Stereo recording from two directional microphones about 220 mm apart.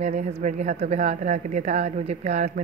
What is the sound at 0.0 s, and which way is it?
Speech, 35° right (ahead or behind).